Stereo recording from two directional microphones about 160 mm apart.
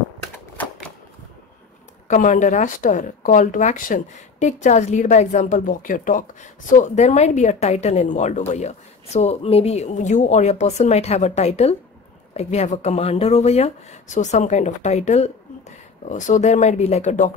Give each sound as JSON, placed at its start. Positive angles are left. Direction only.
{"t": 2.0, "sound": "speech", "side_deg": 50}